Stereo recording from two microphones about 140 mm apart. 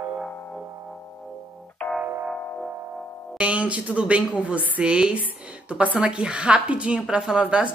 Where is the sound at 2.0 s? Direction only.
15° right (ahead or behind).